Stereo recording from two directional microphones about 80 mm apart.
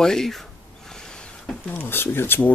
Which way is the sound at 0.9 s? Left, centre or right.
Centre.